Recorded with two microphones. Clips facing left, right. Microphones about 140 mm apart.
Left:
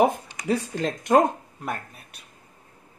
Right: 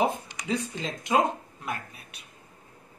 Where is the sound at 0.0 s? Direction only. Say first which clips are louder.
Left 6 dB; 55° left (ahead or behind).